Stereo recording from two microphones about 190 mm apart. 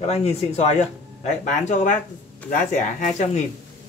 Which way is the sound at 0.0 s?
30° left (ahead or behind).